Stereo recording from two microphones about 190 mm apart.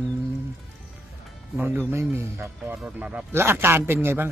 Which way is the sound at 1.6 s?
15° right (ahead or behind).